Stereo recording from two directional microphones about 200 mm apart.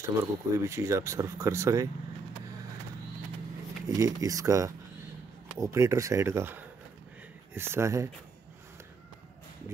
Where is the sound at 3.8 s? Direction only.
15° right (ahead or behind).